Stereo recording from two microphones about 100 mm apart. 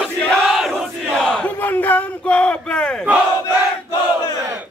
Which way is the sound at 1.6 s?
20° left (ahead or behind).